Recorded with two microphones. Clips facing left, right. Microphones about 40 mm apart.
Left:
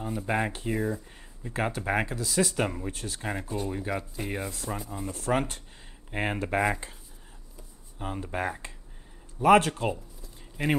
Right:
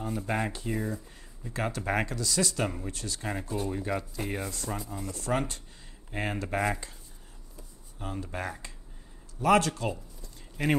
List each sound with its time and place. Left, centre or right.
0.0 s speech: centre
1.5 s speech: left
1.8 s speech: centre; by 3.2 s left
3.2 s speech: centre
5.0 s speech: left
8.2 s speech: left
10.2 s a sound: centre